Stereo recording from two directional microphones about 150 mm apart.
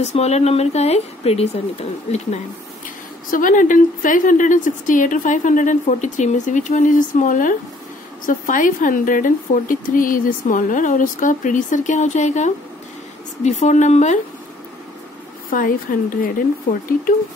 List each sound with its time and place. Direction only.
0.0 s speech: 45° left (ahead or behind)
3.3 s a woman's voice: 65° left (ahead or behind)
15.5 s a woman's voice: 65° left (ahead or behind)